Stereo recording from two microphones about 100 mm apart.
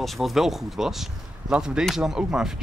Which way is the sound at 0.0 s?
Centre (ahead or behind).